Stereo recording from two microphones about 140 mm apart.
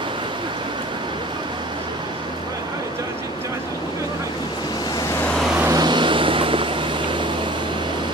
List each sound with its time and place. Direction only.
5.7 s vehicle: 30° right (ahead or behind)